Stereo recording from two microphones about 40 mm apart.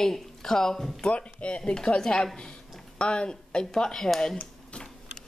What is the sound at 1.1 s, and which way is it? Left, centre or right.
Speech, left.